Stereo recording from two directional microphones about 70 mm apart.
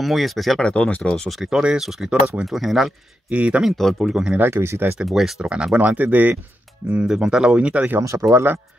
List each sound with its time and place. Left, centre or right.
0.0 s speech: centre
0.6 s speech: centre
1.1 s speech: centre
1.4 s speech: centre
3.3 s speech: centre
3.6 s speech: centre
4.1 s speech: centre
4.4 s speech: right
4.9 s speech: centre
5.4 s speech: centre
6.9 s speech: centre
8.0 s speech: right